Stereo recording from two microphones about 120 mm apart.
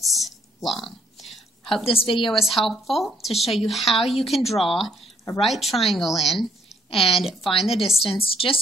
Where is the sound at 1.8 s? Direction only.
50° left (ahead or behind).